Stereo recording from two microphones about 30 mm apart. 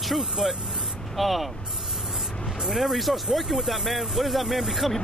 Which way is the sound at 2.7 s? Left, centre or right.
Centre.